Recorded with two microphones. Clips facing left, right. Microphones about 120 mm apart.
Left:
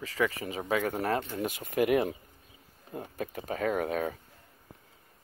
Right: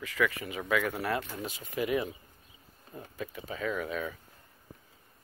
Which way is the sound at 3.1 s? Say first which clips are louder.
Left 3 dB; 50° left (ahead or behind).